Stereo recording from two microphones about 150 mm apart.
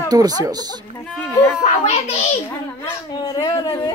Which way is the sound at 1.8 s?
50° left (ahead or behind).